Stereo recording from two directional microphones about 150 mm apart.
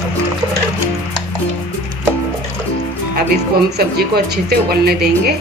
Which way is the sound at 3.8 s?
90° right.